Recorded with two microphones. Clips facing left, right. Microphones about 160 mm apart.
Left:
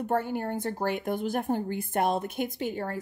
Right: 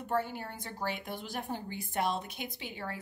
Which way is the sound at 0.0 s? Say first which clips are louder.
Left 6 dB; 50° left (ahead or behind).